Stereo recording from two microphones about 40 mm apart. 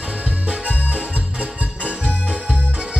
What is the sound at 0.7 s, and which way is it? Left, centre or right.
Music, right.